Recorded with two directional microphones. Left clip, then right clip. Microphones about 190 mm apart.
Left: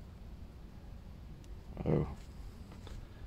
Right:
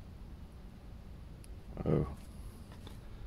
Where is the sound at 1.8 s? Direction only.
10° right (ahead or behind).